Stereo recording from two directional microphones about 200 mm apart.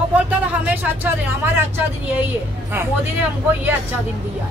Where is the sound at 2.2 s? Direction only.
10° right (ahead or behind).